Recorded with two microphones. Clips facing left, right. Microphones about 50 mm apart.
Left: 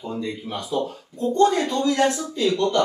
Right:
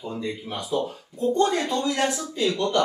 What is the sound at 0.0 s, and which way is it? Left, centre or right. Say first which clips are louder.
Speech: left 2 dB; centre.